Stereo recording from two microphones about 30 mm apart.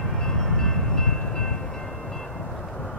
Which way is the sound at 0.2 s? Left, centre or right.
Centre.